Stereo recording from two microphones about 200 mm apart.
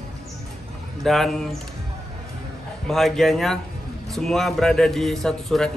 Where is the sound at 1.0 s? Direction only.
Centre (ahead or behind).